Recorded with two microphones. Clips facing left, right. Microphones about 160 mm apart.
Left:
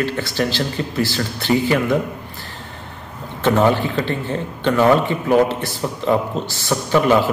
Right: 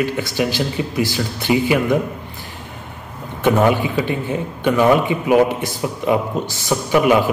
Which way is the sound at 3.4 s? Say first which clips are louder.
Right 1 dB; 10° right (ahead or behind).